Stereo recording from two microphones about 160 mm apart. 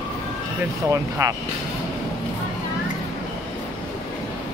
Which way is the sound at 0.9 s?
20° right (ahead or behind).